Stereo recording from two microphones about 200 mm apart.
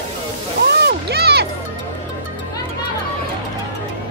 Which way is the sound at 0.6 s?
55° right (ahead or behind).